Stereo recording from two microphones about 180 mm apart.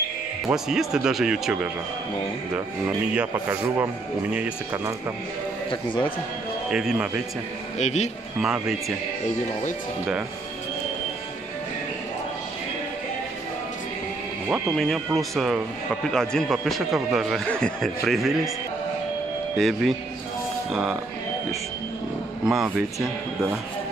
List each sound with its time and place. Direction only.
0.5 s speech: 5° right (ahead or behind)
3.2 s speech: 10° right (ahead or behind)
5.7 s speech: 30° left (ahead or behind)
6.7 s speech: 5° right (ahead or behind)
7.8 s a man's voice: 40° left (ahead or behind)
8.4 s speech: 5° right (ahead or behind)
14.5 s speech: centre (ahead or behind)
19.5 s speech: centre (ahead or behind)
22.4 s speech: centre (ahead or behind)